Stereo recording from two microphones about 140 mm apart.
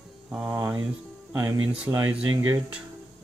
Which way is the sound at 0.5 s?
20° right (ahead or behind).